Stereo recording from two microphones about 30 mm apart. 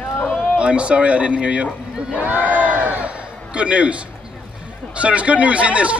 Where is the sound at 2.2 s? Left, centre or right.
Right.